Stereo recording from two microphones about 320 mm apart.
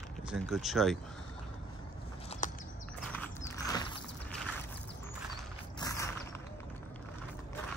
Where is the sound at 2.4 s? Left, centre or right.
Left.